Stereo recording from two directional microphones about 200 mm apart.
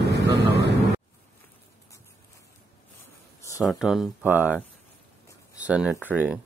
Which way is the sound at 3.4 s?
15° left (ahead or behind).